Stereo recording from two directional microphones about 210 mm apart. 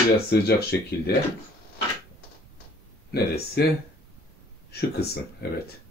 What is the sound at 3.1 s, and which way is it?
Speech, 50° left (ahead or behind).